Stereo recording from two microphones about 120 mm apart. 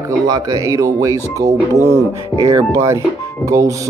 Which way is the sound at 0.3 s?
30° right (ahead or behind).